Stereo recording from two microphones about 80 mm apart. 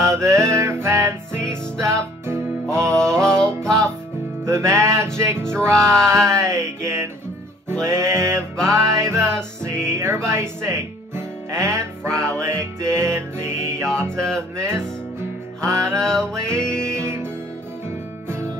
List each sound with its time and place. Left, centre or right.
0.0 s music: right
3.0 s music: centre
4.5 s music: right
5.7 s music: centre
6.0 s music: right
16.0 s music: centre
17.0 s music: right